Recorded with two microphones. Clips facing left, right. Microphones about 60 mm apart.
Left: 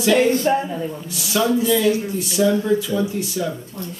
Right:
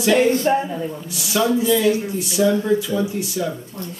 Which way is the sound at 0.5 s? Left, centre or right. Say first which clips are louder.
Right 1 dB; centre.